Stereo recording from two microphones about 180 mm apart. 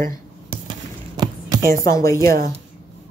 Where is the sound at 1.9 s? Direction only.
20° left (ahead or behind).